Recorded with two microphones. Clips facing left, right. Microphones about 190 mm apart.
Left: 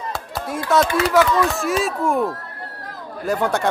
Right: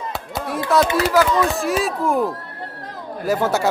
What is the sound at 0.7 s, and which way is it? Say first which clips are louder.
Speech: even; centre (ahead or behind).